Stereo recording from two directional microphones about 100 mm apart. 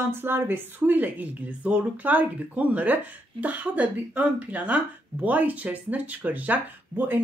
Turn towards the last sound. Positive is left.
turn(degrees=-20)  # may be behind; listen again after turning